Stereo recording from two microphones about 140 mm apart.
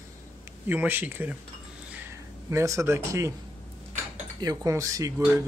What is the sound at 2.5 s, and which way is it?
Speech, 20° right (ahead or behind).